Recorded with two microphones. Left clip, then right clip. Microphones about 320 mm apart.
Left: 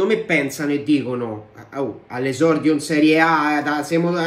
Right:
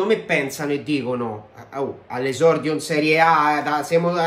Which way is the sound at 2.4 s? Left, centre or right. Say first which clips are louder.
Even; centre.